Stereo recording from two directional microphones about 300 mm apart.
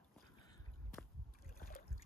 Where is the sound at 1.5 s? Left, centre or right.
Left.